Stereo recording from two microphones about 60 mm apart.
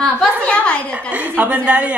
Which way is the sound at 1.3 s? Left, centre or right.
Right.